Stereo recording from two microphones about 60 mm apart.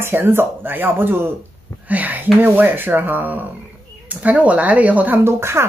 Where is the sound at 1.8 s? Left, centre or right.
Right.